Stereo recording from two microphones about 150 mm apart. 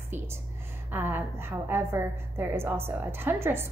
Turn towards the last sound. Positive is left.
turn(degrees=-15)  # may be behind; listen again after turning